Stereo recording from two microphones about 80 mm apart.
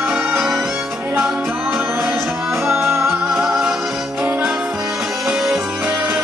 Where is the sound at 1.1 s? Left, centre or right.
Centre.